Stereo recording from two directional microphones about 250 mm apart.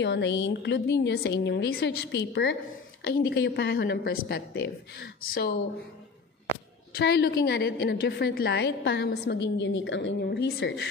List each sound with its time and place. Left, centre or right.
0.0 s a woman's voice: left
6.5 s a woman's voice: left